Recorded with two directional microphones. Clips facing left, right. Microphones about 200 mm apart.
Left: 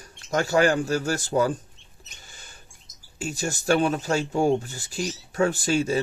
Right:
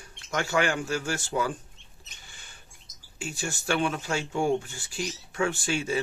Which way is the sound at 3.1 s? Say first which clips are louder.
Left 5 dB; 40° left (ahead or behind).